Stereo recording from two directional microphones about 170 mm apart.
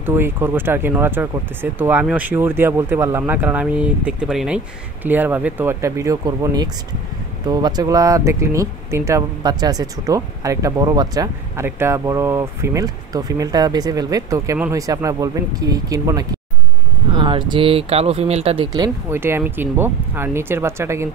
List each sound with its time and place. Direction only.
0.0 s speech: 15° right (ahead or behind); by 18.9 s 30° right (ahead or behind)
19.0 s speech: 15° right (ahead or behind)